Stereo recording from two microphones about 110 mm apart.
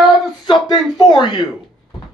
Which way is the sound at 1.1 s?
45° left (ahead or behind).